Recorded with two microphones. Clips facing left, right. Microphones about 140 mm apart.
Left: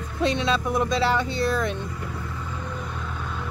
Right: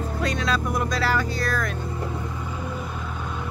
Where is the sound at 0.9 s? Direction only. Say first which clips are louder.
Left 2 dB; 25° left (ahead or behind).